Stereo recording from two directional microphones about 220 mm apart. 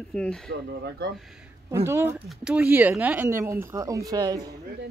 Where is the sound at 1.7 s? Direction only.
10° right (ahead or behind).